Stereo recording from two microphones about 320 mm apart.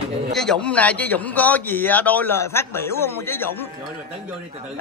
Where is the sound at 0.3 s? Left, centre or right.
Centre.